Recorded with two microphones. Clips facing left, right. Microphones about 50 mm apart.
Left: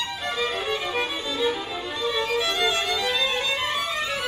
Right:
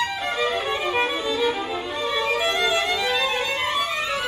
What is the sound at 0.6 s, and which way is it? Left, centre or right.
Music, centre.